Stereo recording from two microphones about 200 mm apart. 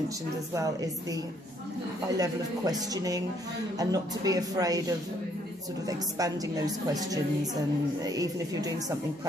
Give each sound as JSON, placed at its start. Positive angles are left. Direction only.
{"t": 2.1, "sound": "a woman's voice", "side_deg": -20}